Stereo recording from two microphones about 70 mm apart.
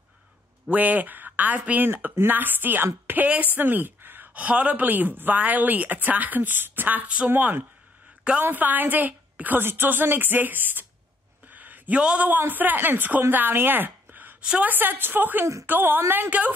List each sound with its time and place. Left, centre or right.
0.7 s a woman's voice: right
11.4 s a sound: right
12.0 s a man's voice: centre
12.3 s a woman's voice: right